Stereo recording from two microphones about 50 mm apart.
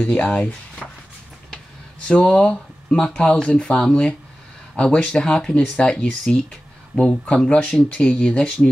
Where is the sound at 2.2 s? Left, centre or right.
Centre.